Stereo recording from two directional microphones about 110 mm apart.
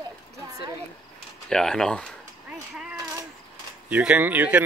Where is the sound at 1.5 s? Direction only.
5° left (ahead or behind).